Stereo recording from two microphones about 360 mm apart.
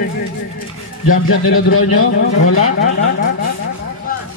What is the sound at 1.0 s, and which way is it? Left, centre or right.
A man's voice, left.